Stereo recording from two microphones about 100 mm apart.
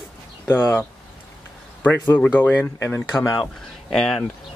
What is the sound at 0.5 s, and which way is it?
Speech, 20° left (ahead or behind).